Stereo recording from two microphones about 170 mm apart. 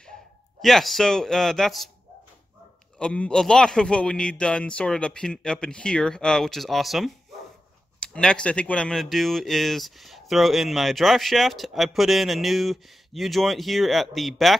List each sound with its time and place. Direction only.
0.6 s speech: centre (ahead or behind)
3.0 s speech: 5° left (ahead or behind)